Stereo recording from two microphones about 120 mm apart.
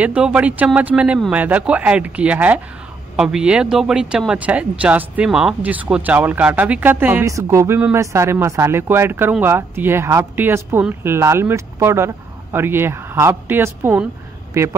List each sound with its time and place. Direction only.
0.0 s speech: 10° right (ahead or behind)
7.2 s a man's voice: 25° right (ahead or behind)